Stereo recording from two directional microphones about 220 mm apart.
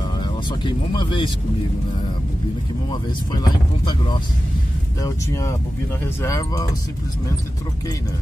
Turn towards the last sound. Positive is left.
turn(degrees=15)  # may be behind; listen again after turning